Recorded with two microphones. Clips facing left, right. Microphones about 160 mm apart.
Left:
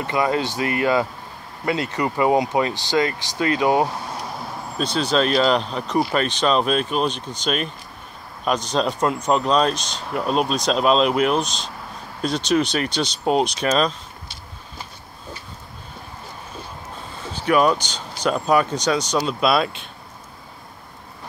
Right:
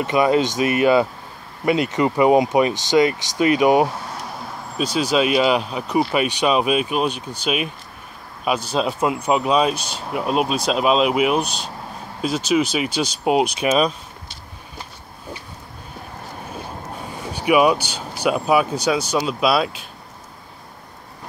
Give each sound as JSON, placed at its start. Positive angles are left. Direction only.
{"t": 0.0, "sound": "speech", "side_deg": -20}
{"t": 17.1, "sound": "speech", "side_deg": -15}